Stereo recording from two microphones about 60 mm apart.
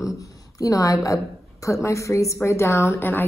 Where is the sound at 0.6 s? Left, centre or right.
Left.